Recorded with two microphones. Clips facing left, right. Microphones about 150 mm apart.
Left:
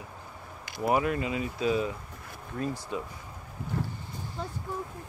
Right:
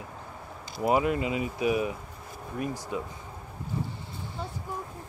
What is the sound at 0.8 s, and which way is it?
Speech, 20° right (ahead or behind).